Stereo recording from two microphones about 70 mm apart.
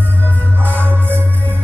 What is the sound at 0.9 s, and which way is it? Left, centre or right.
Music, right.